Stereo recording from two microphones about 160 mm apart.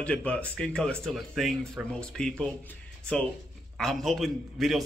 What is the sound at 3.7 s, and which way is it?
Speech, centre (ahead or behind).